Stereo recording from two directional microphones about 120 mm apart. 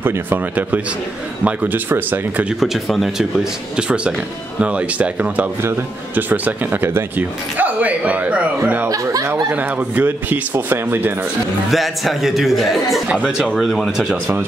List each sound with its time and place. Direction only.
0.0 s speech: 15° right (ahead or behind)
2.6 s speech: centre (ahead or behind)
8.8 s speech: 30° right (ahead or behind)
9.5 s speech: 15° right (ahead or behind)
11.7 s speech: centre (ahead or behind)